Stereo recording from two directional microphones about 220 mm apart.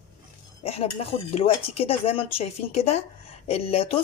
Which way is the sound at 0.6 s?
25° left (ahead or behind).